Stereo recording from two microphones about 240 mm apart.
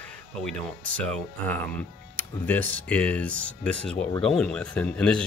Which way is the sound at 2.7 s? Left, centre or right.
Centre.